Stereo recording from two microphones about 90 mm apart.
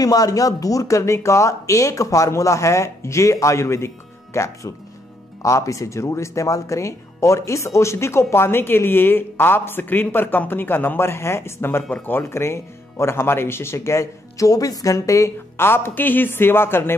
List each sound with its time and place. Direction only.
0.0 s speech: 40° left (ahead or behind); by 16.9 s 25° left (ahead or behind)